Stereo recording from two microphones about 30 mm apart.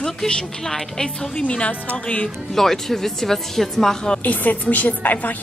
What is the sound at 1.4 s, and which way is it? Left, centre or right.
Speech, left.